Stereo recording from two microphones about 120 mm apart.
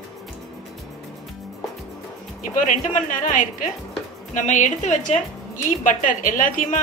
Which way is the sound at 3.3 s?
90° left.